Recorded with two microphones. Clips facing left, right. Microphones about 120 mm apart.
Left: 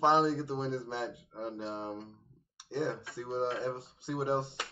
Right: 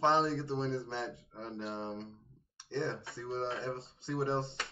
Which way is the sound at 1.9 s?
Centre (ahead or behind).